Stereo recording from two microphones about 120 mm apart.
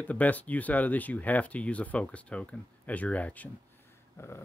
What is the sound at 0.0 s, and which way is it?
Speech, 15° left (ahead or behind).